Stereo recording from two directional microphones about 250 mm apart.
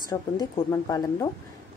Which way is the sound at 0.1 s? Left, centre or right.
Centre.